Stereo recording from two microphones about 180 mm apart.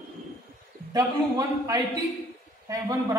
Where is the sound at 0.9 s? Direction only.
15° right (ahead or behind).